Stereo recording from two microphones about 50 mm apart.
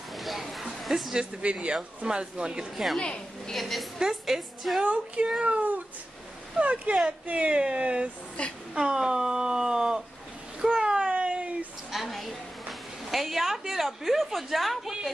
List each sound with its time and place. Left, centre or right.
0.2 s a sound: centre
1.1 s speech: right
3.0 s a woman's voice: centre
3.5 s a woman's voice: centre
4.8 s speech: right
8.4 s a woman's voice: left
8.7 s speech: centre
10.6 s a sound: centre
11.9 s a sound: centre